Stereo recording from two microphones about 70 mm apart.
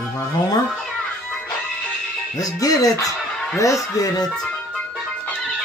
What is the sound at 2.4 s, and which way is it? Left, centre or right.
Speech, left.